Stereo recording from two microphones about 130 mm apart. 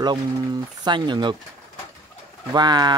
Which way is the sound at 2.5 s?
35° right (ahead or behind).